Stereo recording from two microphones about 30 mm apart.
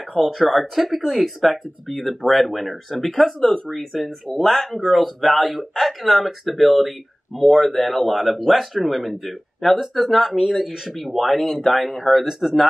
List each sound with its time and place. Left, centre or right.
0.2 s speech: centre
3.3 s speech: centre
10.3 s speech: centre
11.0 s speech: centre